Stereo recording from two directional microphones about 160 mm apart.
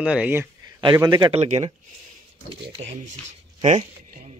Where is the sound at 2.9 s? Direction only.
50° right (ahead or behind).